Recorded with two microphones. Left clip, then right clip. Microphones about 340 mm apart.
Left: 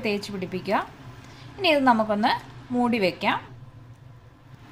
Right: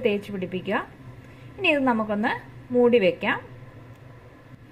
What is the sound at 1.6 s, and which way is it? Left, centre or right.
A woman's voice, centre.